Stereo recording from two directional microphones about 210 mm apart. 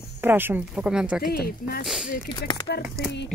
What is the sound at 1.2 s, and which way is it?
Speech, 45° left (ahead or behind).